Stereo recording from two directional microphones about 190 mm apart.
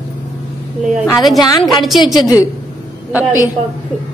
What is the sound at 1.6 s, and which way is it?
Speech, centre (ahead or behind).